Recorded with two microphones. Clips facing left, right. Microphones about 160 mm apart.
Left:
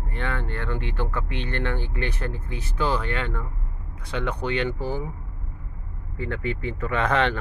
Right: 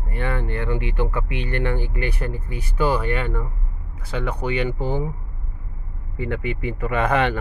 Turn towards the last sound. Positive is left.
turn(degrees=-10)  # may be behind; listen again after turning